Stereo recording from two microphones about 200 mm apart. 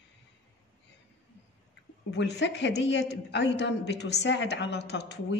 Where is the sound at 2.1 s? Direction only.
60° left (ahead or behind).